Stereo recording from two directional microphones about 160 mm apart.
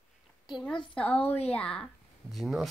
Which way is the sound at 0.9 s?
10° left (ahead or behind).